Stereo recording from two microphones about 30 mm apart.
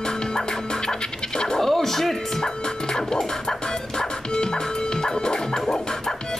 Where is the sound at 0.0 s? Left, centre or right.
Left.